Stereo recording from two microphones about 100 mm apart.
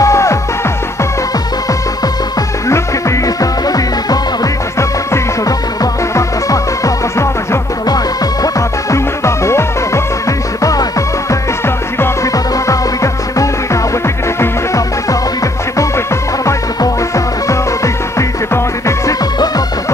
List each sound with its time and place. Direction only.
0.0 s music: 30° left (ahead or behind)
2.7 s music: 35° left (ahead or behind)
16.4 s music: 30° left (ahead or behind)